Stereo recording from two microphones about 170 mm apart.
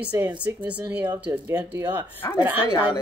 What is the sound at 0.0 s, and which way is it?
Speech, 10° right (ahead or behind).